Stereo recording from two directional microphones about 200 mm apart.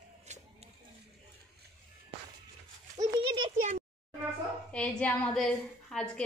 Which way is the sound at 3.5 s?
40° right (ahead or behind).